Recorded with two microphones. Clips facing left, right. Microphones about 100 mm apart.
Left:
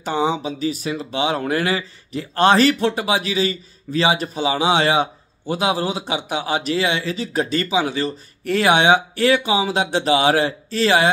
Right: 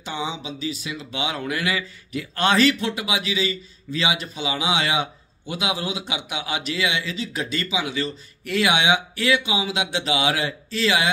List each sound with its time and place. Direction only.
0.0 s speech: 45° left (ahead or behind)